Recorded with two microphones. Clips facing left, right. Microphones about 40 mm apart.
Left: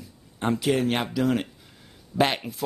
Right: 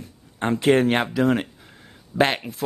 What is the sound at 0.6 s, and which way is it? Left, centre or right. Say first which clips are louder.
Speech: right 8 dB; right.